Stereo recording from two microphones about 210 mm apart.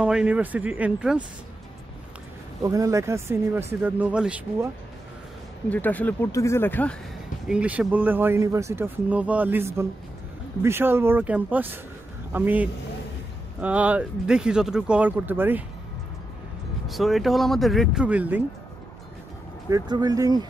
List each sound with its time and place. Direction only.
0.0 s speech: 5° right (ahead or behind)
2.6 s speech: 15° right (ahead or behind)
5.7 s speech: 5° left (ahead or behind)
7.4 s speech: 5° right (ahead or behind)
16.8 s speech: centre (ahead or behind)
19.7 s speech: 20° right (ahead or behind)